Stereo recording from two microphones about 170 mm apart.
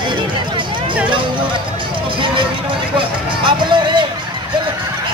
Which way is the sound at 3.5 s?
25° right (ahead or behind).